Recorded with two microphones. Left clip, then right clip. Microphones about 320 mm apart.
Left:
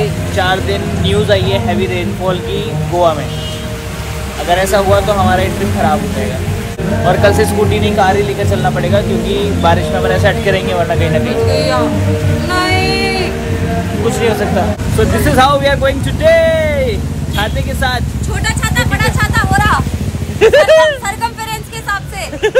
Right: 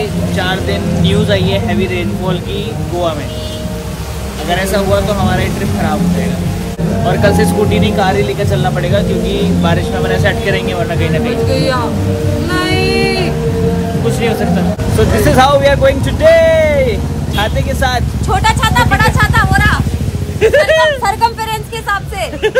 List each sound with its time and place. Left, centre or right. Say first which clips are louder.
0.4 s speech: left 3 dB; centre
4.5 s speech: left 3 dB; centre
7.1 s speech: left 2 dB; centre
11.5 s speech: left 1 dB; centre
12.4 s child singing: left 2 dB; centre
15.0 s speech: right 1 dB; centre
18.3 s vehicle: right 6 dB; centre
19.5 s vehicle: left 1 dB; centre
20.3 s speech: left 2 dB; left
21.0 s speech: right 5 dB; centre